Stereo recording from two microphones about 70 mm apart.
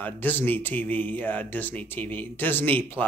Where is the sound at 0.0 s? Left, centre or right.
Left.